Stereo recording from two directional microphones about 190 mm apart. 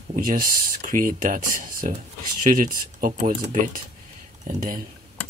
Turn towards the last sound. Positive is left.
turn(degrees=-45)  # may be behind; listen again after turning